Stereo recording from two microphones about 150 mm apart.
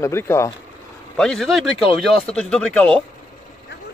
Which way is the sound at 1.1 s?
5° left (ahead or behind).